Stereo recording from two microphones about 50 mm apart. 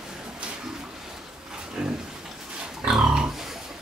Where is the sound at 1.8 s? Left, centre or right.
Centre.